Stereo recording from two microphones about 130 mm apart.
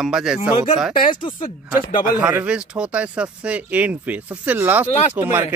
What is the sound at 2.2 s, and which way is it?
A man's voice, 10° right (ahead or behind).